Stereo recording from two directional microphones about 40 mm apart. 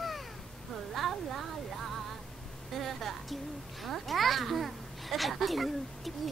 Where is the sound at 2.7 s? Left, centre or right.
Centre.